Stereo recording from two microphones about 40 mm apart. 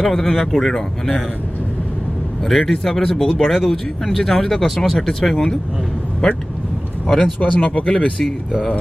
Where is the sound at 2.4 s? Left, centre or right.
Centre.